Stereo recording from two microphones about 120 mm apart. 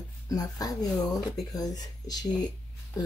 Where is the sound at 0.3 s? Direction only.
30° left (ahead or behind).